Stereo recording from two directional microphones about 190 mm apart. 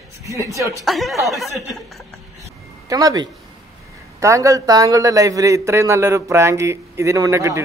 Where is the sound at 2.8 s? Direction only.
20° right (ahead or behind).